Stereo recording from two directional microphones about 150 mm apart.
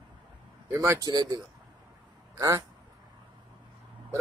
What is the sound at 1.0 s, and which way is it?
Speech, 25° right (ahead or behind).